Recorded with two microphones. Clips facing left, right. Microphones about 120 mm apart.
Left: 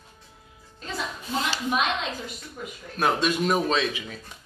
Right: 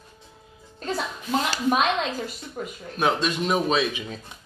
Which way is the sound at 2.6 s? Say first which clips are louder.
Right 5 dB; 45° right (ahead or behind).